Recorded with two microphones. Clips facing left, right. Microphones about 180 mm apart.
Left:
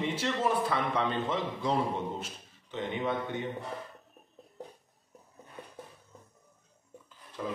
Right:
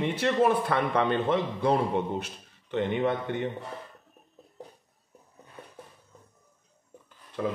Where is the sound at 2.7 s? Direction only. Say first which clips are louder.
Right 6 dB; 60° right (ahead or behind).